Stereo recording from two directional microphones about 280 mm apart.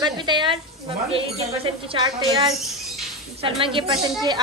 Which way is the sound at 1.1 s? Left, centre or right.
Right.